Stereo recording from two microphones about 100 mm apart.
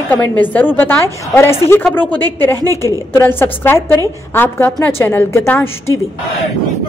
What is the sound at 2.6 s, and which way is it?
Speech, 35° right (ahead or behind).